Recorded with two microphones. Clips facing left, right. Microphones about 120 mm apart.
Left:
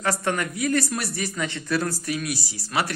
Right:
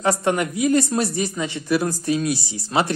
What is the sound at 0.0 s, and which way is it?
Speech, 20° right (ahead or behind).